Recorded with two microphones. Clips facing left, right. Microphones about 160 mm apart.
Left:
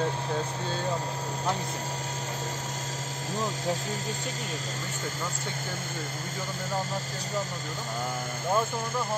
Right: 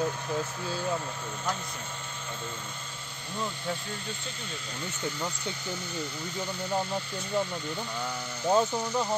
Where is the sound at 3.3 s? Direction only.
40° left (ahead or behind).